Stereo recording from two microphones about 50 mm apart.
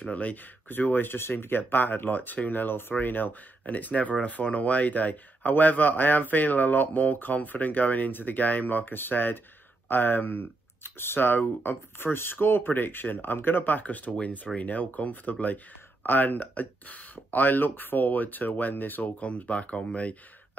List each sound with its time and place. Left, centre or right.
0.0 s speech: left
0.7 s speech: left